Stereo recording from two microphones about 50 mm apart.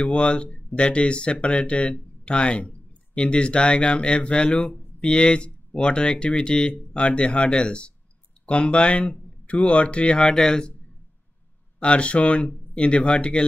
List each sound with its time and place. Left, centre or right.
0.0 s speech: left
10.1 s speech: centre
11.8 s speech: left